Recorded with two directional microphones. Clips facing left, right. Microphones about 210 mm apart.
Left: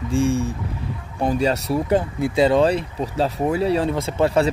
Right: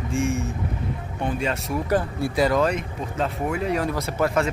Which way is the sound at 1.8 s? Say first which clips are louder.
Left 1 dB; 25° left (ahead or behind).